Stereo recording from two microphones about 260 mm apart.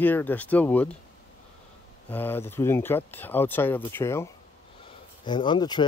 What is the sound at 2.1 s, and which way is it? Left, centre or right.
Speech, centre.